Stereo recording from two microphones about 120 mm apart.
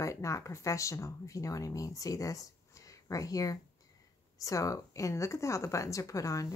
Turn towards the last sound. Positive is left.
turn(degrees=25)  # may be behind; listen again after turning